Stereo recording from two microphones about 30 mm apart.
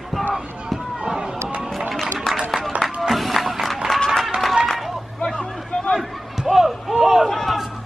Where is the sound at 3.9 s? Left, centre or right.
Centre.